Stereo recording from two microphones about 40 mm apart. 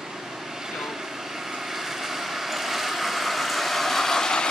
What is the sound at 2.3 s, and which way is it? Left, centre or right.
Vehicle, centre.